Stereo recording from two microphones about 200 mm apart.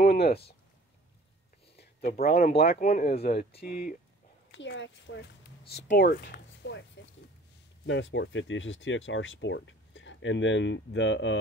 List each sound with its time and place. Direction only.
0.0 s speech: 50° left (ahead or behind)
2.0 s speech: 50° left (ahead or behind)
4.5 s speech: 65° left (ahead or behind)
7.8 s speech: 65° left (ahead or behind)